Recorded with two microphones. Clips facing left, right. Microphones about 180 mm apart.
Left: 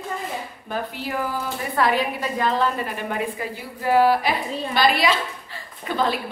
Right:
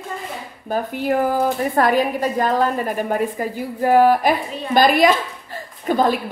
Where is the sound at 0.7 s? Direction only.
50° right (ahead or behind).